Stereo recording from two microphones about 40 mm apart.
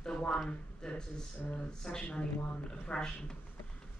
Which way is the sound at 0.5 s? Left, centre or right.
Centre.